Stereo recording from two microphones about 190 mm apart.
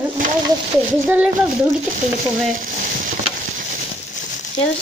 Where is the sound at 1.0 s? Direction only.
10° right (ahead or behind).